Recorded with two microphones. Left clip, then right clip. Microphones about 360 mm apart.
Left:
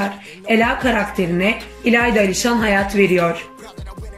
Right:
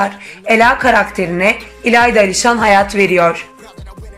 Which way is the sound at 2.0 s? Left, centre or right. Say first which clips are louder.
Right 7 dB; centre.